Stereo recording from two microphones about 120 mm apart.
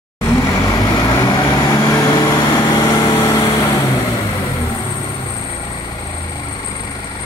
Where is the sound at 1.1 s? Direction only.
30° left (ahead or behind).